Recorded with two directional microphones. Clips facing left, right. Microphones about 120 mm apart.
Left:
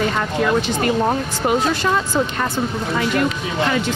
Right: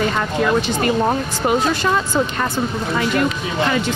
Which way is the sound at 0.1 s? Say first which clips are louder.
Right 1 dB; 25° right (ahead or behind).